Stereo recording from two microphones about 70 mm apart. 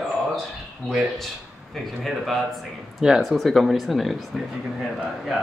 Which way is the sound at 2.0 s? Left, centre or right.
Centre.